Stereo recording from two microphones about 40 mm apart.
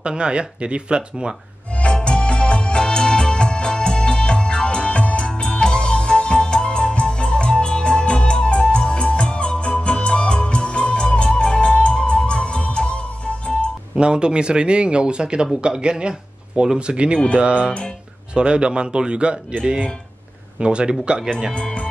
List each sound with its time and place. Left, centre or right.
0.0 s speech: right
1.8 s music: left
13.9 s speech: right
21.5 s speech: left